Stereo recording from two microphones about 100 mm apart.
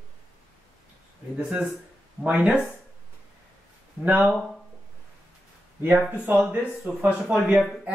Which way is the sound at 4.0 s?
15° right (ahead or behind).